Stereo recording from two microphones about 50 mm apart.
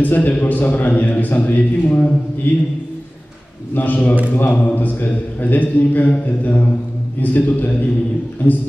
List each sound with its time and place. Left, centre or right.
0.0 s a man's voice: left
3.7 s a man's voice: left